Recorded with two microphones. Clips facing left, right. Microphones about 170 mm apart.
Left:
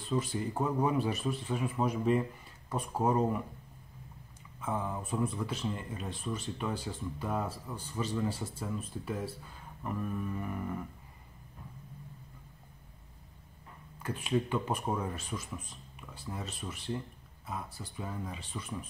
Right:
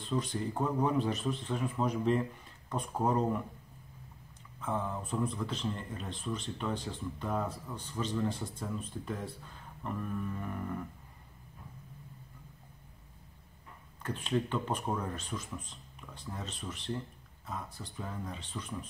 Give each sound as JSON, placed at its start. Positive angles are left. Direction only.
{"t": 0.0, "sound": "speech", "side_deg": 5}
{"t": 4.6, "sound": "speech", "side_deg": 10}
{"t": 14.0, "sound": "speech", "side_deg": 10}